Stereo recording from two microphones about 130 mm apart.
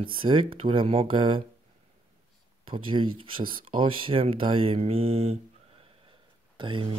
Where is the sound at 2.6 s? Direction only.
40° right (ahead or behind).